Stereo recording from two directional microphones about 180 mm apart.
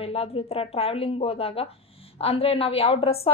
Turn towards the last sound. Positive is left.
turn(degrees=35)  # may be behind; listen again after turning